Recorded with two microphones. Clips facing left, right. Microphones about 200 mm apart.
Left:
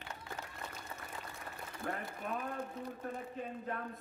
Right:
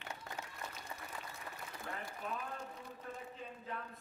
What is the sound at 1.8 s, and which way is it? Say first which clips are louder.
Speech: left 5 dB; 55° left (ahead or behind).